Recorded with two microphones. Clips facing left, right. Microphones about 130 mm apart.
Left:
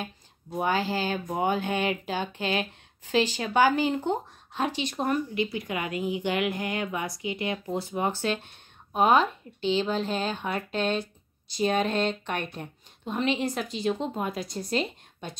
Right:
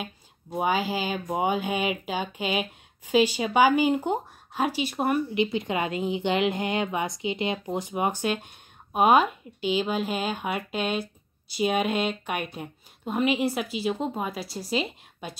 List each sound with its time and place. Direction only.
0.0 s speech: 15° right (ahead or behind)
5.3 s a woman's voice: 20° right (ahead or behind); by 15.3 s 5° right (ahead or behind)